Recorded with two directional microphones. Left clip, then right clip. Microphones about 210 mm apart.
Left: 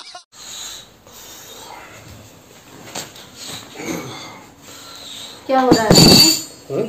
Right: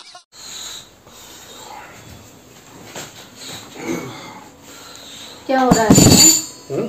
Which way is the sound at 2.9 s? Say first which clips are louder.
Left 2 dB; 55° left (ahead or behind).